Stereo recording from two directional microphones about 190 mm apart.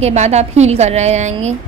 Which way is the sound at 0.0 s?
35° right (ahead or behind).